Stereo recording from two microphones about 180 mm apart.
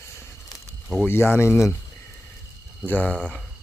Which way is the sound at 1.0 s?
15° left (ahead or behind).